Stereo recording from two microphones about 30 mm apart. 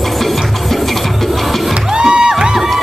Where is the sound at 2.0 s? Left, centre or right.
Right.